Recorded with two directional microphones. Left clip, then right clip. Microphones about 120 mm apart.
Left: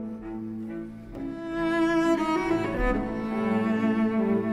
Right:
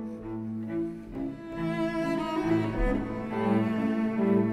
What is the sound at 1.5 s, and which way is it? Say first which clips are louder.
Music: left 7 dB; 45° left (ahead or behind).